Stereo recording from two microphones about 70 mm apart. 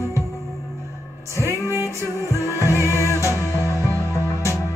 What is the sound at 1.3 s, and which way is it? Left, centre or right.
Music, left.